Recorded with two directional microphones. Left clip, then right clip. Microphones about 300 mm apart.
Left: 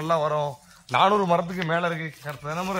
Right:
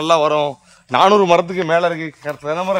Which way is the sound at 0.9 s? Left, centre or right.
Right.